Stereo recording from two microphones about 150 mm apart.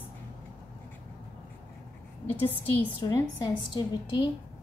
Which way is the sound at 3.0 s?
30° left (ahead or behind).